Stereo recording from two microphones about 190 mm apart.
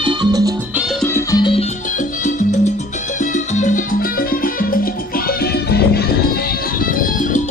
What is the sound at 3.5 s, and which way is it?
Salsa music, 40° left (ahead or behind).